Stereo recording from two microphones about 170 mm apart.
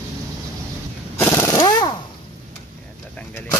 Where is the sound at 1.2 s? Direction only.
15° left (ahead or behind).